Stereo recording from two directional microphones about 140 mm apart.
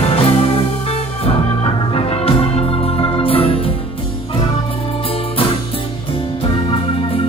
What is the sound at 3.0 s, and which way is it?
Organ, 40° left (ahead or behind).